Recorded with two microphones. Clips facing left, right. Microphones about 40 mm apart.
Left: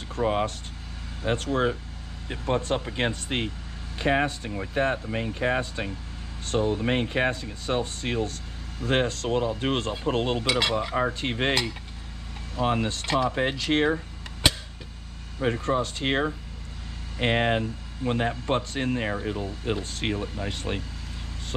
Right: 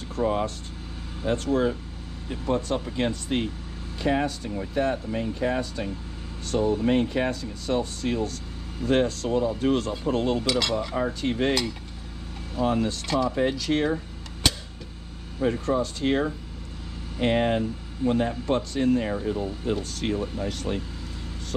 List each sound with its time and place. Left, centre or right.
0.1 s speech: left
10.4 s speech: left
11.1 s speech: left
12.6 s speech: left
14.4 s a sound: centre
15.6 s speech: left